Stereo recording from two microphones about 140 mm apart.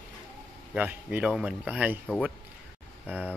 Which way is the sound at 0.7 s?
10° right (ahead or behind).